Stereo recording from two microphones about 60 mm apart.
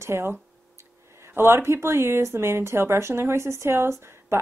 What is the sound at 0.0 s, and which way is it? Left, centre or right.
Speech, right.